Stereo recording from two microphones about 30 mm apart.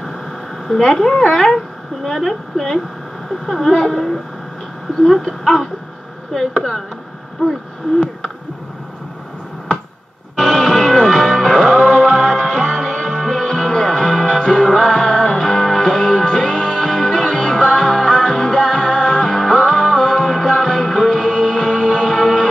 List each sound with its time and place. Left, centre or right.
0.7 s speech: centre
10.3 s music: centre
14.8 s music: centre